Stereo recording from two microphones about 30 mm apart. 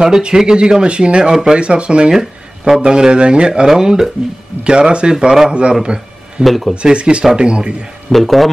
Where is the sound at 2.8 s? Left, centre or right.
Right.